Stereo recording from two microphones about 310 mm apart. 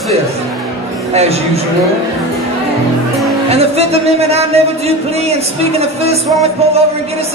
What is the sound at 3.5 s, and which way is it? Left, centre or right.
Music, centre.